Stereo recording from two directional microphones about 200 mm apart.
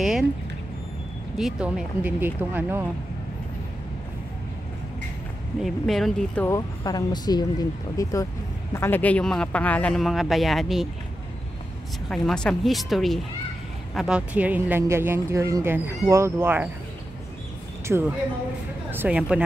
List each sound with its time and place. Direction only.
0.0 s speech: centre (ahead or behind)
1.4 s speech: 5° right (ahead or behind)
5.6 s speech: centre (ahead or behind)
12.1 s speech: 5° left (ahead or behind)
17.9 s speech: 5° right (ahead or behind)